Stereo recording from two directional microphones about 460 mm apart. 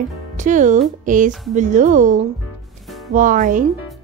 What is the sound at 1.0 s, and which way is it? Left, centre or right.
Music, centre.